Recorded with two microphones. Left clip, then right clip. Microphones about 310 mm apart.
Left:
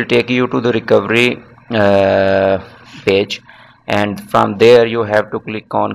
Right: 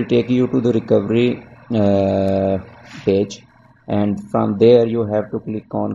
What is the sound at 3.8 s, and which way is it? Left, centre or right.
Speech, left.